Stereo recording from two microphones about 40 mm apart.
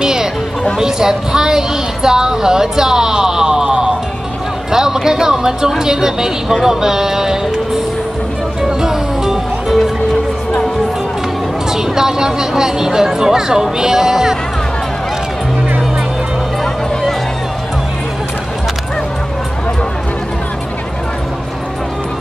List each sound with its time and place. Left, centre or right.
0.0 s music: centre
0.7 s speech: centre
4.6 s a sound: centre
5.0 s music: centre
5.8 s speech: centre
8.6 s music: centre
11.7 s speech: centre